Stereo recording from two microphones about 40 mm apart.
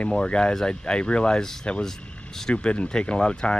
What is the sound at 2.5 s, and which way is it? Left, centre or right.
Speech, left.